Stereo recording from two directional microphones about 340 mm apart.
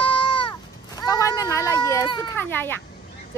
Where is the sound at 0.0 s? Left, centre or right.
Centre.